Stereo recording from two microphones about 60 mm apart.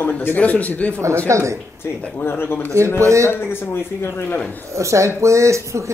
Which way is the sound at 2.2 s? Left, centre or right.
Left.